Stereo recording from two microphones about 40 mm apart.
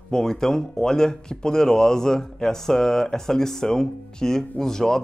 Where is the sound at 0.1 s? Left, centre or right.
Centre.